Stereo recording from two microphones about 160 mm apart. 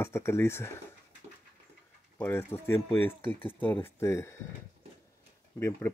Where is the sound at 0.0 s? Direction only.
15° left (ahead or behind).